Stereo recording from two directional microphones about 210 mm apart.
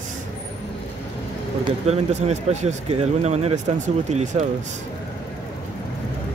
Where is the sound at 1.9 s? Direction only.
30° right (ahead or behind).